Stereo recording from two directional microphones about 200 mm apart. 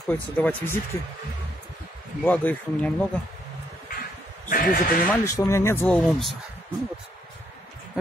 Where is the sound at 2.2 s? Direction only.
10° left (ahead or behind).